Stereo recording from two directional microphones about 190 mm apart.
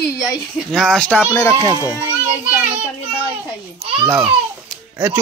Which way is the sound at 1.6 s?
15° left (ahead or behind).